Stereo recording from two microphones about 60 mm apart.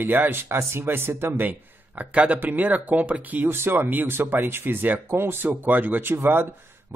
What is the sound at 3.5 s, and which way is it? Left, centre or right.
Speech, right.